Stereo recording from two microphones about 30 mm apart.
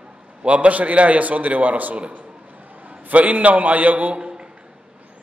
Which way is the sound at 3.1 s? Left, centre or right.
Right.